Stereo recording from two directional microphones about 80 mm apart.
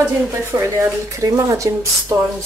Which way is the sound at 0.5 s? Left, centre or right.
Right.